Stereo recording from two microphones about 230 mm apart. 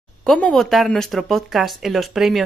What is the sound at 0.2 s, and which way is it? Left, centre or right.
Speech, centre.